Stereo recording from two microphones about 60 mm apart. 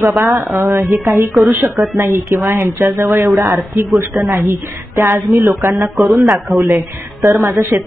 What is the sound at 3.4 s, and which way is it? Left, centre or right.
Speech, right.